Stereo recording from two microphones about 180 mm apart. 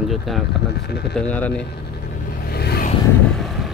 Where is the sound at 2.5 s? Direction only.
60° left (ahead or behind).